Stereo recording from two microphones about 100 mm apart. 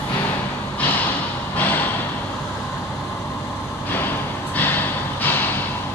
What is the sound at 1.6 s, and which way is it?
Vehicle, 20° left (ahead or behind).